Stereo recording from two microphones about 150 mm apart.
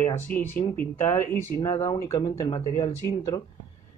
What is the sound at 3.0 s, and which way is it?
Speech, 25° left (ahead or behind).